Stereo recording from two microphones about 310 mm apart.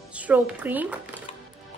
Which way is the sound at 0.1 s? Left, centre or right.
Centre.